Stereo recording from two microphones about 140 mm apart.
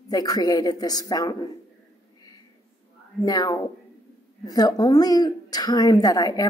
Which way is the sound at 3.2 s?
25° left (ahead or behind).